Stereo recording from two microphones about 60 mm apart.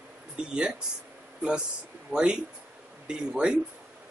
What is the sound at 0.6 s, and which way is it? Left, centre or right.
Speech, centre.